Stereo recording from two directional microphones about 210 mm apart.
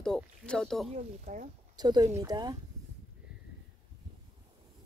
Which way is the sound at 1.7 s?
20° right (ahead or behind).